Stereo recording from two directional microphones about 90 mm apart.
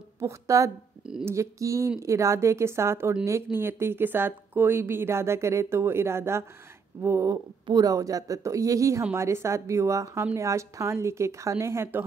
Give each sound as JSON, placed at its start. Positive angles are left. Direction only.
{"t": 0.2, "sound": "a woman's voice", "side_deg": -35}
{"t": 7.2, "sound": "a woman's voice", "side_deg": -50}